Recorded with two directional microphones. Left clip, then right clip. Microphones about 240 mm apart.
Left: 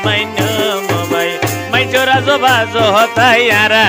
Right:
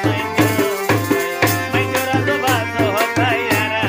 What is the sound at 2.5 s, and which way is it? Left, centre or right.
Music, left.